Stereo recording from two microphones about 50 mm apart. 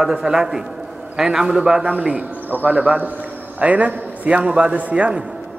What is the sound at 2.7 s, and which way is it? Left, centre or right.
A man's voice, right.